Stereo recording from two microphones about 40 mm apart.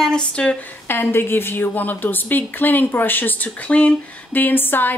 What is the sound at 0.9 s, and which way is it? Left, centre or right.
Speech, left.